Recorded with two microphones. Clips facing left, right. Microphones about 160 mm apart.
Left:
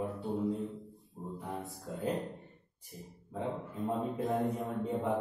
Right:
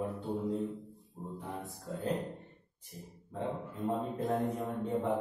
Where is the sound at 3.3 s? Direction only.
Centre (ahead or behind).